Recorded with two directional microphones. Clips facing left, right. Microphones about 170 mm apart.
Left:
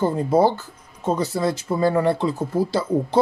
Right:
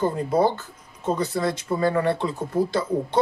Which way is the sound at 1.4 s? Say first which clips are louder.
Left 3 dB; 30° left (ahead or behind).